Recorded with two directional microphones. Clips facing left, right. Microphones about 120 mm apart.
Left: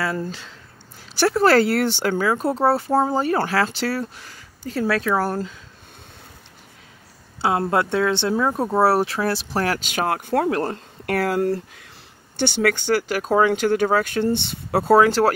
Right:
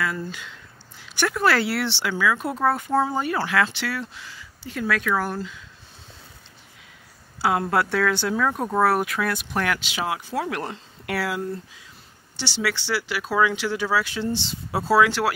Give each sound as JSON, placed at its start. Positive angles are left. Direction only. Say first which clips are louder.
{"t": 0.0, "sound": "speech", "louder": "left 3 dB", "side_deg": 30}
{"t": 7.4, "sound": "speech", "louder": "left 2 dB", "side_deg": 25}
{"t": 9.8, "sound": "speech", "louder": "left 5 dB", "side_deg": 50}
{"t": 11.4, "sound": "speech", "louder": "left 8 dB", "side_deg": 65}
{"t": 12.4, "sound": "speech", "louder": "left 7 dB", "side_deg": 55}
{"t": 15.0, "sound": "speech", "louder": "left 3 dB", "side_deg": 40}